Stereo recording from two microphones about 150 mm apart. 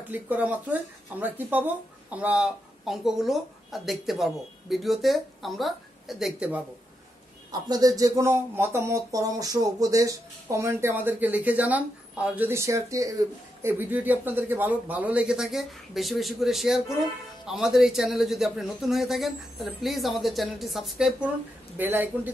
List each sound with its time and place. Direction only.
0.1 s speech: 10° right (ahead or behind)
7.5 s speech: 25° right (ahead or behind)